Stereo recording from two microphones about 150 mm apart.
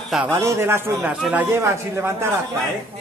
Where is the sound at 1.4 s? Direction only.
15° right (ahead or behind).